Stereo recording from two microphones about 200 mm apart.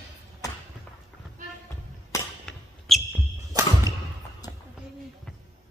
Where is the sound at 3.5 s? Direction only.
15° right (ahead or behind).